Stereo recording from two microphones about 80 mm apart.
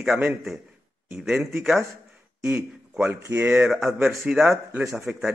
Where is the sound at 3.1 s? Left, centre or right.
Right.